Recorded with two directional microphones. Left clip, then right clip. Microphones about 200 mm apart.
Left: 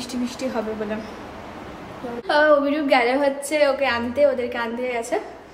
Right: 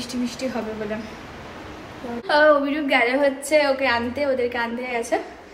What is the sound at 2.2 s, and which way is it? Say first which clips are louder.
A woman's voice: even; 15° left (ahead or behind).